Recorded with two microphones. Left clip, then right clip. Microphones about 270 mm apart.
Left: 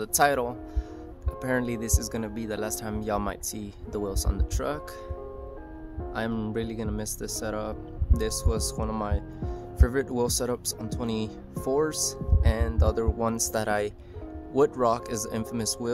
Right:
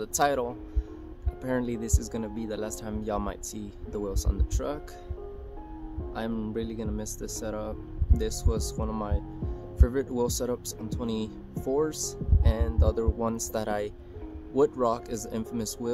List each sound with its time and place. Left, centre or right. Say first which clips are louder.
0.0 s speech: left 3 dB; centre
6.1 s speech: left 2 dB; centre